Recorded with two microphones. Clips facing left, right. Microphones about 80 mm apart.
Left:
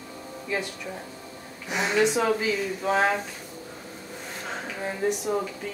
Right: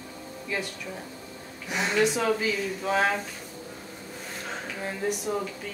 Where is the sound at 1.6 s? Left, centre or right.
Centre.